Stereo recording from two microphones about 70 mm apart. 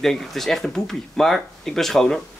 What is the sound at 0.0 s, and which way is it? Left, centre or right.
Speech, centre.